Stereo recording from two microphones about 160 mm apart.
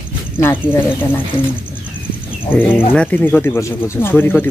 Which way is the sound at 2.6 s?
15° left (ahead or behind).